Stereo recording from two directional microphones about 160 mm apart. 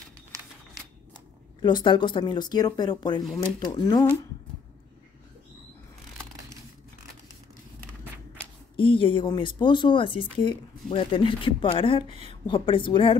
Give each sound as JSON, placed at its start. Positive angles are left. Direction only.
{"t": 1.6, "sound": "speech", "side_deg": 30}
{"t": 8.7, "sound": "speech", "side_deg": 30}